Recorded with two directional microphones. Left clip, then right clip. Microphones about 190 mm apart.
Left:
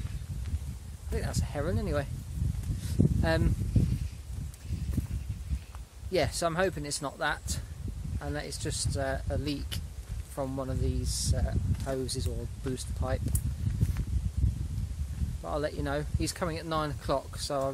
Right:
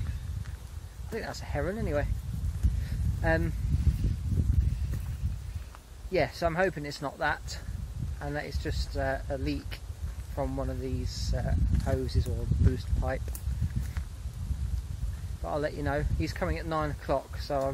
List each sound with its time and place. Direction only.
1.1 s speech: 10° left (ahead or behind)
3.2 s speech: 20° left (ahead or behind)
6.1 s speech: 15° left (ahead or behind)
15.4 s speech: 15° left (ahead or behind)